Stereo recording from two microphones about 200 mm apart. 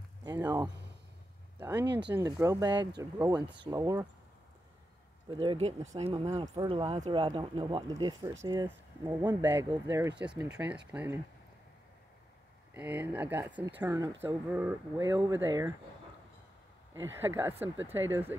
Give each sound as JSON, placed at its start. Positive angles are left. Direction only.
{"t": 0.2, "sound": "speech", "side_deg": -20}
{"t": 1.9, "sound": "speech", "side_deg": -60}
{"t": 2.1, "sound": "speech", "side_deg": -15}
{"t": 5.3, "sound": "speech", "side_deg": -25}
{"t": 6.3, "sound": "speech", "side_deg": -20}
{"t": 9.4, "sound": "speech", "side_deg": -10}
{"t": 12.7, "sound": "speech", "side_deg": -10}
{"t": 16.9, "sound": "speech", "side_deg": -10}